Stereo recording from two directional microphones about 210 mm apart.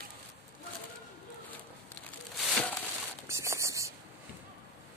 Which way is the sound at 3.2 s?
15° right (ahead or behind).